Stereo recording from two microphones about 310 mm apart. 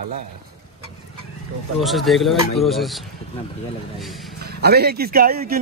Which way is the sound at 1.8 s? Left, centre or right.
Centre.